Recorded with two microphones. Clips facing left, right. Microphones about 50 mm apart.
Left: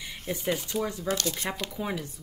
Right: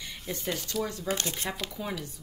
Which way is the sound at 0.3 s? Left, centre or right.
Centre.